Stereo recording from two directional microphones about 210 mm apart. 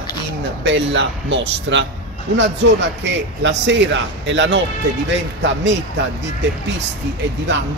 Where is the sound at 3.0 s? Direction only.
60° right (ahead or behind).